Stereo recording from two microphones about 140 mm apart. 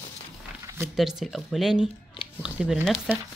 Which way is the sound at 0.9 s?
Centre (ahead or behind).